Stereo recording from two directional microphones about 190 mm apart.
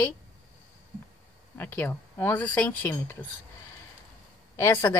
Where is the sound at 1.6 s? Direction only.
10° left (ahead or behind).